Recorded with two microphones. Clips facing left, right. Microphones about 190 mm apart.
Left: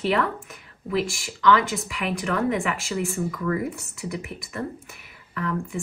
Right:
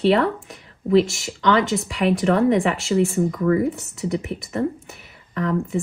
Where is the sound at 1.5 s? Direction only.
35° right (ahead or behind).